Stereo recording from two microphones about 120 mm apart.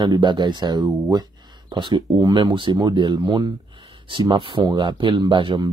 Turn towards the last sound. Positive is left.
turn(degrees=-40)  # may be behind; listen again after turning